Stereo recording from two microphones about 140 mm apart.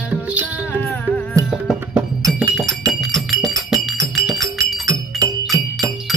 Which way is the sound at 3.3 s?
Centre (ahead or behind).